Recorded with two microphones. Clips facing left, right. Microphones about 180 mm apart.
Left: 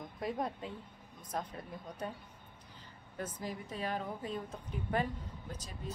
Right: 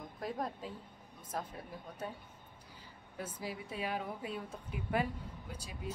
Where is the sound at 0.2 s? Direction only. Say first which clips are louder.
Left 2 dB; centre (ahead or behind).